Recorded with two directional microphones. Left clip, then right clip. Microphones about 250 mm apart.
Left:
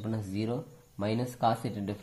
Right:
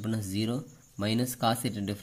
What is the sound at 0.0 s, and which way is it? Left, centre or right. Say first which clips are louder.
Speech: right 2 dB; right.